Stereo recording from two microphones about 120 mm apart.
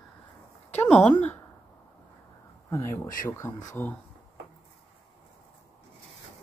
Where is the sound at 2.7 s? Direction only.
25° left (ahead or behind).